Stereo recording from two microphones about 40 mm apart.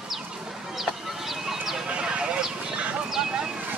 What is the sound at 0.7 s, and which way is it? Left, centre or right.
Chicken, centre.